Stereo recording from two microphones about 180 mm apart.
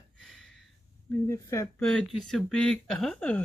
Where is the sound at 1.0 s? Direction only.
15° left (ahead or behind).